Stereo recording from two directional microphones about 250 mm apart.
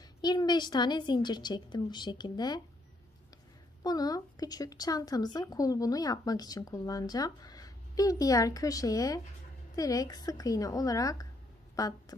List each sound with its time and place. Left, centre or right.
0.2 s speech: centre
3.8 s a woman's voice: centre